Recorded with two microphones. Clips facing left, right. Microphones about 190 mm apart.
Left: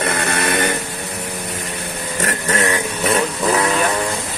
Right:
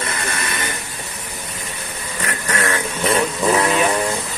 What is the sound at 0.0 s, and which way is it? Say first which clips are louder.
Vehicle: left 6 dB; 65° left (ahead or behind).